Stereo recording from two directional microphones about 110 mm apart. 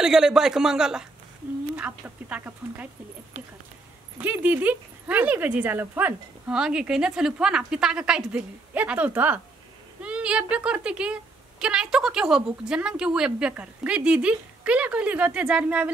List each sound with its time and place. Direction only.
0.0 s speech: 5° right (ahead or behind)
4.2 s speech: 15° right (ahead or behind)